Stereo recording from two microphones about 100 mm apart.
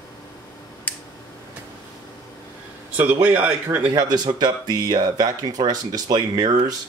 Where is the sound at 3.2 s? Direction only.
15° right (ahead or behind).